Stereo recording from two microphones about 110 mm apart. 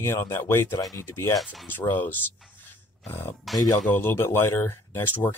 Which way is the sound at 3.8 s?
20° left (ahead or behind).